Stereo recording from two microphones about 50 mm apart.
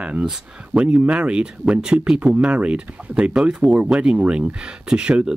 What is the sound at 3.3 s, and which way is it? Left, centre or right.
Speech, centre.